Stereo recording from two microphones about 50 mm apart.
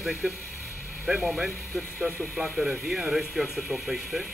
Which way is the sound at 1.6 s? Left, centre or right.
Centre.